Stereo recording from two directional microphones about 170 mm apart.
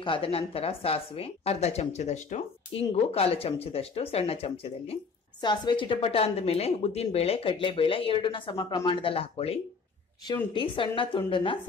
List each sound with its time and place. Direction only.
0.0 s a woman's voice: 30° left (ahead or behind)